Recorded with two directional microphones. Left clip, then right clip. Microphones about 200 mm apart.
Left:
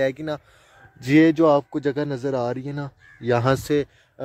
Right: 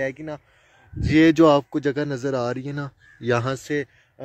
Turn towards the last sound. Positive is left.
turn(degrees=10)  # may be behind; listen again after turning